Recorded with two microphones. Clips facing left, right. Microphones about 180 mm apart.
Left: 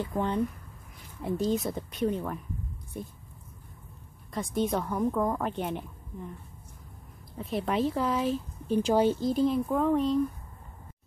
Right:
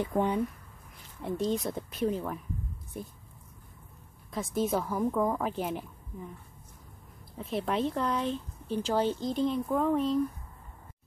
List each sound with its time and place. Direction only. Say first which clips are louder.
0.0 s speech: right 2 dB; 15° right (ahead or behind)
1.2 s speech: left 2 dB; centre (ahead or behind)
4.3 s speech: left 1 dB; centre (ahead or behind)
7.3 s speech: left 2 dB; centre (ahead or behind)